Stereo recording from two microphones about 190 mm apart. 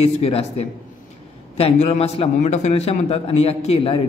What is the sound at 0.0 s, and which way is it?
A man's voice, 30° left (ahead or behind).